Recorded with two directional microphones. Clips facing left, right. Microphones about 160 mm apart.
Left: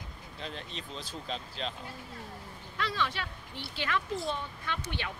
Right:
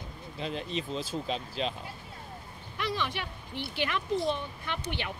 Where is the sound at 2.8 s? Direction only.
15° right (ahead or behind).